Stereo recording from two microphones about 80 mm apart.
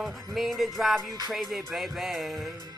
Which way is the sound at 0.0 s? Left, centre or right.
Centre.